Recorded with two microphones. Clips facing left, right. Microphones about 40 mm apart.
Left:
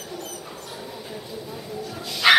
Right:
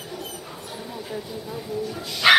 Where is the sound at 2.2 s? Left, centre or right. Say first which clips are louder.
Even; centre.